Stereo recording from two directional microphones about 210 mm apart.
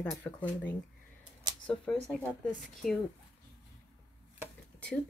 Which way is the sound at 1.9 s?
5° left (ahead or behind).